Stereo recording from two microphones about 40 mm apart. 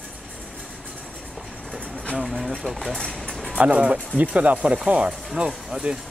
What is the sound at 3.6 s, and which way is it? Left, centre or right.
Speech, right.